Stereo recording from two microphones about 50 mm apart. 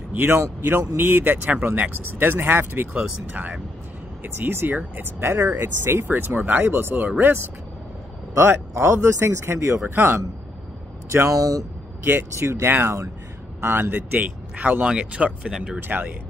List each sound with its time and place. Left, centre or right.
0.1 s speech: right
4.2 s speech: right
5.2 s speech: right
6.0 s speech: right
8.4 s speech: right
9.9 s speech: right
12.8 s speech: right
13.6 s speech: right
15.9 s speech: right